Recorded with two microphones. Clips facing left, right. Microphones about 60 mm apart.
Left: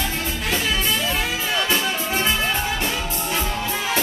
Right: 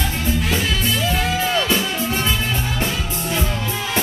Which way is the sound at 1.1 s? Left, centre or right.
Centre.